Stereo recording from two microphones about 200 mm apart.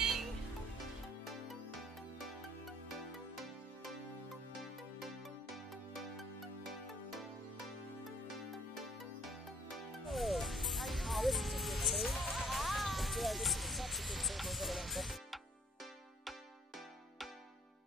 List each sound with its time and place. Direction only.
0.0 s music: centre (ahead or behind)